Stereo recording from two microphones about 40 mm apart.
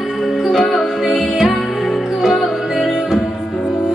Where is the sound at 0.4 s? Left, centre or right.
Centre.